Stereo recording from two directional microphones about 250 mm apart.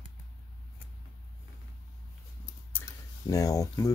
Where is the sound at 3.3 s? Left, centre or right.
Centre.